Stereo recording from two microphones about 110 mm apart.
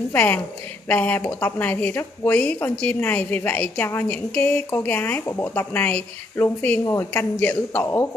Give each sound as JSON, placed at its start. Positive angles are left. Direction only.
{"t": 0.1, "sound": "a woman's voice", "side_deg": 15}
{"t": 6.8, "sound": "speech", "side_deg": 25}